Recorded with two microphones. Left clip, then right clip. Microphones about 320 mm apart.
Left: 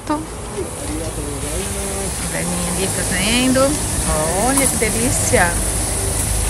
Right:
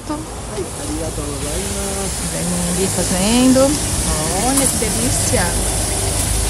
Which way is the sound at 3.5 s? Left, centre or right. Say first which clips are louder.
Right 2 dB; centre.